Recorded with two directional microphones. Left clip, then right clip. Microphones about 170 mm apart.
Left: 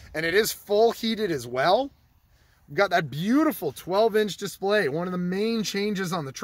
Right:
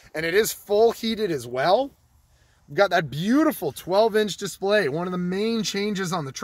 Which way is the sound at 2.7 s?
25° right (ahead or behind).